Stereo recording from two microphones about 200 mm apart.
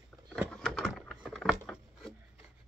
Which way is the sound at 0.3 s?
5° left (ahead or behind).